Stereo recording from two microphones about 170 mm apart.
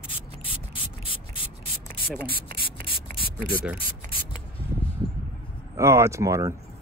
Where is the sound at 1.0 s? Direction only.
30° left (ahead or behind).